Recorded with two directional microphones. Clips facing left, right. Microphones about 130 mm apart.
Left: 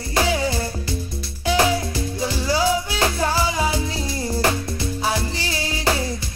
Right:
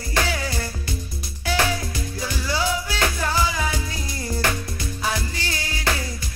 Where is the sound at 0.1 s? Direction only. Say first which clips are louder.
Left 4 dB; 25° left (ahead or behind).